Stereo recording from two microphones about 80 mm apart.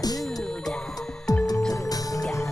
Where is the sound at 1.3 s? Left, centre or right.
Left.